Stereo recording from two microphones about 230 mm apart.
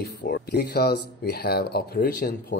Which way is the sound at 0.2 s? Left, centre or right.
Left.